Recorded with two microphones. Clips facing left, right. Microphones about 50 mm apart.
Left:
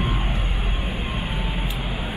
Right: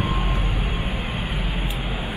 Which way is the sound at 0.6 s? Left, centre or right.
Right.